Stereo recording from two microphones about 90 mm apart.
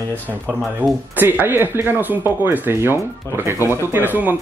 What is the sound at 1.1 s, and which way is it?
Speech, 20° right (ahead or behind).